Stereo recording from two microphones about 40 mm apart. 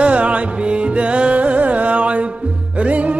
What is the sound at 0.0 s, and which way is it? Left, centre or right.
Music, right.